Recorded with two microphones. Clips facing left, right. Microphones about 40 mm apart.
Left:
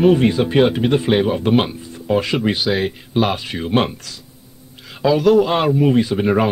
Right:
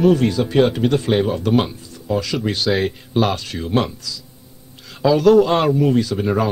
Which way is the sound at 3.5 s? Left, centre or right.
Left.